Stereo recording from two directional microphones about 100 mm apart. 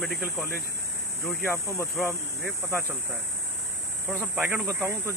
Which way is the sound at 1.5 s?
30° left (ahead or behind).